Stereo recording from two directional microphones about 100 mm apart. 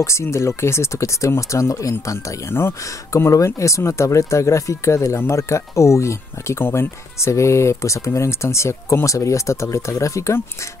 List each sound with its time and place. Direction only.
0.0 s speech: 30° left (ahead or behind)